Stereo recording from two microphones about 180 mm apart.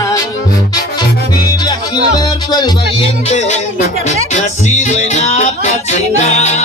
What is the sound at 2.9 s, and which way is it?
Music, 40° left (ahead or behind).